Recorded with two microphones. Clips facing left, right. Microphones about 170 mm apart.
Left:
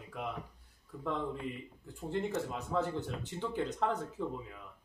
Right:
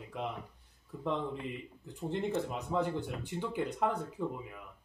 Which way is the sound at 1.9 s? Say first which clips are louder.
Right 1 dB; 20° right (ahead or behind).